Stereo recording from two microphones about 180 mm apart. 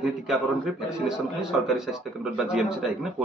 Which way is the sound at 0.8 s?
5° right (ahead or behind).